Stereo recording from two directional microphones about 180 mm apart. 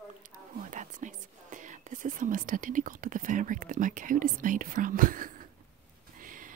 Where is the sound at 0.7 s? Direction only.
45° right (ahead or behind).